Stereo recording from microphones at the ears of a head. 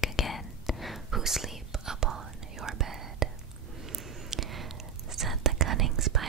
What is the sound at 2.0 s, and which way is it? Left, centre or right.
Whispering, right.